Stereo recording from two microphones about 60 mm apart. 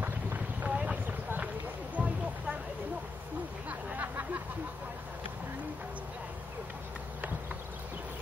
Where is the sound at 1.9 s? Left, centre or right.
Right.